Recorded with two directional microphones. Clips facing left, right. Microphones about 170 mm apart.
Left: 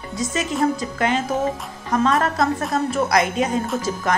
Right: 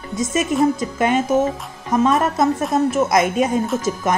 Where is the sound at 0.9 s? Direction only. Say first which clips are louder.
Right 4 dB; 20° right (ahead or behind).